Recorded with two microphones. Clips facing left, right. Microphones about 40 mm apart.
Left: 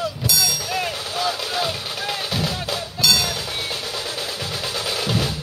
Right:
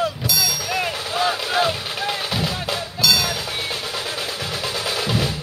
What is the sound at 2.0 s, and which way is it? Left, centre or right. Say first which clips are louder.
Music: right 1 dB; centre.